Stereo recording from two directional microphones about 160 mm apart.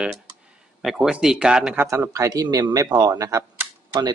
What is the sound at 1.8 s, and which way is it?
Speech, 20° right (ahead or behind).